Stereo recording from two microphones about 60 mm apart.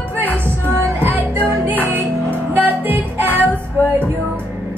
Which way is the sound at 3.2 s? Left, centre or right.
Left.